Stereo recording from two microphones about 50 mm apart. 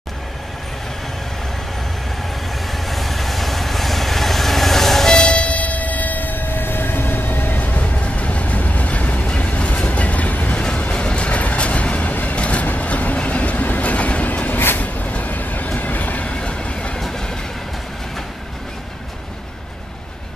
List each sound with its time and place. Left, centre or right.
2.7 s vehicle: centre; by 9.3 s left
9.3 s train: left
10.5 s vehicle: centre
10.8 s music: left
12.4 s vehicle: left
12.6 s train: left
16.3 s train: centre